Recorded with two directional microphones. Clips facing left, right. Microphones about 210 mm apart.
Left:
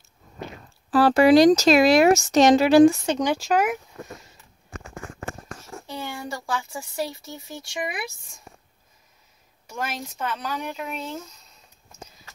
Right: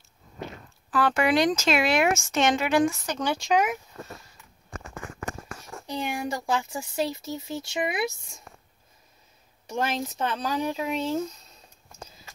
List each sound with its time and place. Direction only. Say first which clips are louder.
0.8 s speech: left 8 dB; 35° left (ahead or behind)
3.2 s speech: left 4 dB; 15° left (ahead or behind)
3.4 s speech: right 1 dB; 5° left (ahead or behind)
5.9 s speech: right 3 dB; 15° right (ahead or behind)
9.7 s speech: right 4 dB; 30° right (ahead or behind)